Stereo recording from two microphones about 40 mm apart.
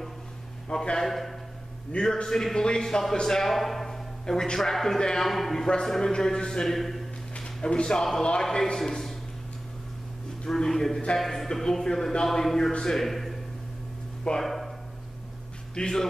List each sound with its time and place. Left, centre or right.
0.7 s a man's voice: centre
1.0 s a man's voice: centre
7.3 s a man's voice: left
10.4 s a man's voice: centre
14.4 s a sound: centre
15.7 s a man's voice: centre